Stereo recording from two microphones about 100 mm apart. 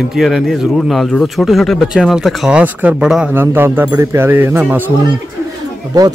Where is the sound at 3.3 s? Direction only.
20° right (ahead or behind).